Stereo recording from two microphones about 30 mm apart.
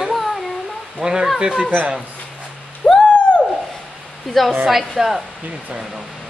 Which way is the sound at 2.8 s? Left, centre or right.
Left.